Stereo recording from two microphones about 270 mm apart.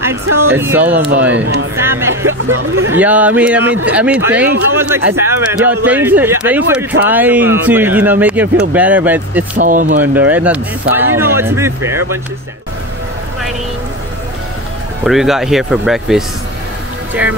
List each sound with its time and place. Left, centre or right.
0.0 s speech: centre
1.3 s speech: right
1.8 s speech: centre
9.6 s speech: right
9.9 s speech: centre
15.0 s speech: centre